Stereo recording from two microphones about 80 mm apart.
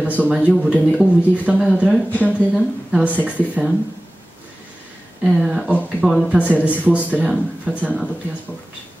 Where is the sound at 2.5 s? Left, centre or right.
Centre.